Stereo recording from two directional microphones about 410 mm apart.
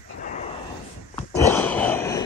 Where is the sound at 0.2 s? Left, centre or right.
Centre.